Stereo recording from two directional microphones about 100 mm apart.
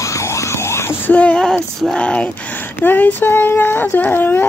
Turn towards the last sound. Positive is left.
turn(degrees=20)  # may be behind; listen again after turning